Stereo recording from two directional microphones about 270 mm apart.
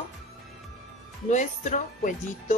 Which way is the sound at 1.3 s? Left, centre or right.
Left.